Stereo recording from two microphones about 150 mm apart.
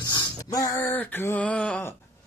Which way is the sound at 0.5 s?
25° left (ahead or behind).